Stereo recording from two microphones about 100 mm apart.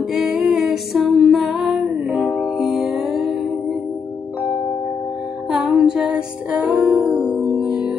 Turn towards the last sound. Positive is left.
turn(degrees=-5)  # may be behind; listen again after turning